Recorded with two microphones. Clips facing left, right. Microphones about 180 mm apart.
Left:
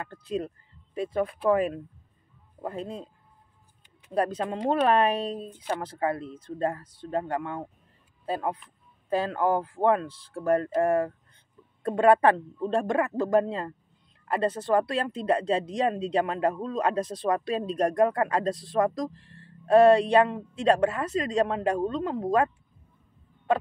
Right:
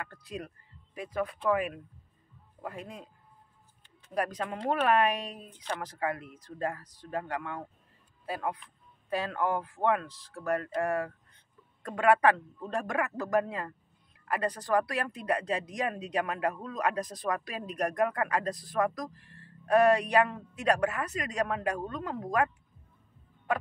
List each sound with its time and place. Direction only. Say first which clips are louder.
0.9 s speech: left 6 dB; 30° left (ahead or behind)
4.1 s speech: left 5 dB; 30° left (ahead or behind)